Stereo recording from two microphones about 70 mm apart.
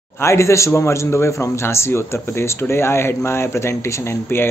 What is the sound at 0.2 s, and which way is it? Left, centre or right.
Speech, left.